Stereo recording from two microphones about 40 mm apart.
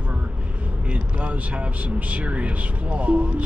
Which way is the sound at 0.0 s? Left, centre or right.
Right.